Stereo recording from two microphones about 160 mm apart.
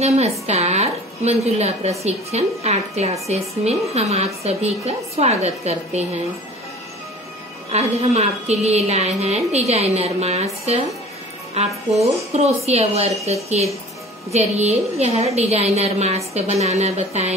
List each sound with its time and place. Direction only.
0.0 s a woman's voice: 40° right (ahead or behind)
7.7 s a woman's voice: 40° right (ahead or behind)
12.4 s a woman's voice: 40° right (ahead or behind)